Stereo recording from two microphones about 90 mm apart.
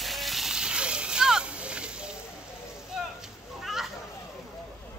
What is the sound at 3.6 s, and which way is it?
Children playing, 5° right (ahead or behind).